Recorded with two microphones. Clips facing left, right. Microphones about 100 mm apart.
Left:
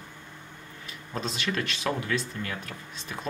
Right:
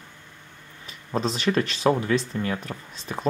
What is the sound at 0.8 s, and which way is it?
Speech, 35° right (ahead or behind).